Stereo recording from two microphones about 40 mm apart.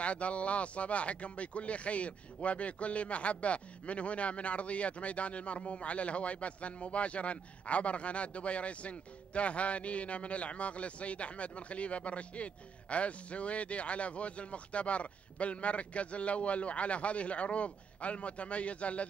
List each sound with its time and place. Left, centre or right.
0.0 s speech: left